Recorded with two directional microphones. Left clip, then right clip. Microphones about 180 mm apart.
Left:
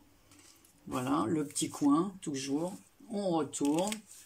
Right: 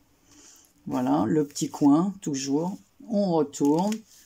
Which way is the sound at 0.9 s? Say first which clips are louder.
Right 7 dB; 40° right (ahead or behind).